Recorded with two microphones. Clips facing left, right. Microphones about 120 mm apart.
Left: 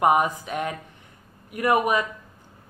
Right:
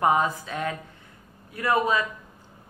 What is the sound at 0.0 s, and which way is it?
A woman's voice, 15° left (ahead or behind).